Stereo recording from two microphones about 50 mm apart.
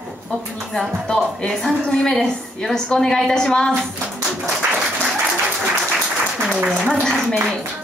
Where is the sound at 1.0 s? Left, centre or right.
Centre.